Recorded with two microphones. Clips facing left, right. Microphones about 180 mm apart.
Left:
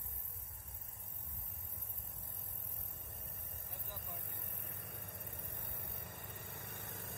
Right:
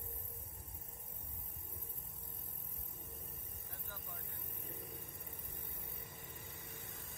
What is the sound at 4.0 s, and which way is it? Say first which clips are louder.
Vehicle: left 1 dB; 60° left (ahead or behind).